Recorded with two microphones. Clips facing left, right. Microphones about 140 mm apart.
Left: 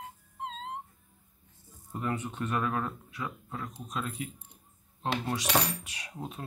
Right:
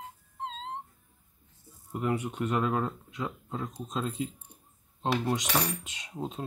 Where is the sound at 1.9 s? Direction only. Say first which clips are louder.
Right 3 dB; 15° right (ahead or behind).